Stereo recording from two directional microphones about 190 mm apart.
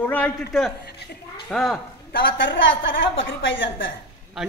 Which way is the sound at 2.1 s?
70° left (ahead or behind).